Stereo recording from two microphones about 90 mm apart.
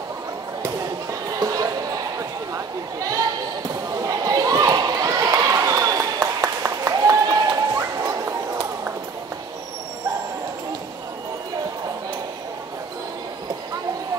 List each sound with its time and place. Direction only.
1.4 s music: 45° right (ahead or behind)
2.5 s chatter: 40° right (ahead or behind)
3.9 s a sound: 40° right (ahead or behind)